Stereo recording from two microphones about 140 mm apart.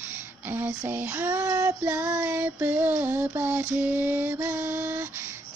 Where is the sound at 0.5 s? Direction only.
15° right (ahead or behind).